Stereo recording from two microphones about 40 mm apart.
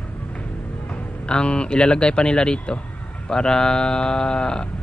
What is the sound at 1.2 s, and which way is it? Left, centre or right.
Speech, left.